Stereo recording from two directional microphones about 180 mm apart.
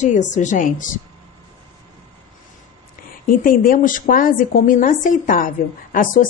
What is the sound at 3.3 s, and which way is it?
Speech, 50° left (ahead or behind).